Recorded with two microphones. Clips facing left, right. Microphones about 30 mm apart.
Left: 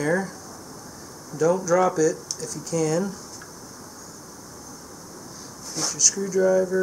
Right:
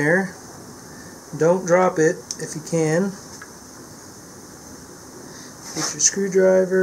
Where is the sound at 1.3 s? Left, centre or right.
Centre.